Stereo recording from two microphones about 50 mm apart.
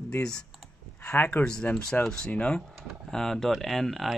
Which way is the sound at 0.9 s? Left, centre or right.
Left.